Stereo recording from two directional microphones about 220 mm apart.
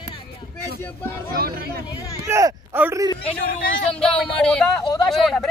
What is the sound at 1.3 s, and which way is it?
Speech, 45° right (ahead or behind).